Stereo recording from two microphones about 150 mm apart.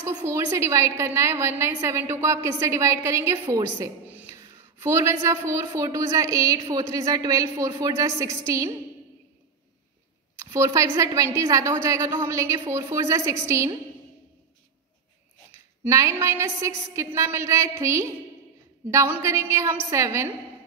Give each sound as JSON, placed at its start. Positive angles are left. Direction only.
{"t": 0.0, "sound": "a woman's voice", "side_deg": -15}
{"t": 4.1, "sound": "a sound", "side_deg": -10}
{"t": 4.4, "sound": "a woman's voice", "side_deg": -15}
{"t": 10.4, "sound": "a woman's voice", "side_deg": -20}
{"t": 15.8, "sound": "a woman's voice", "side_deg": -20}